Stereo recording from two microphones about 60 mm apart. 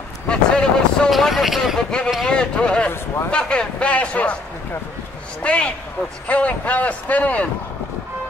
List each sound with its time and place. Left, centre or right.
0.3 s vehicle: centre
1.1 s speech: centre
2.2 s a man's voice: centre
5.4 s a man's voice: left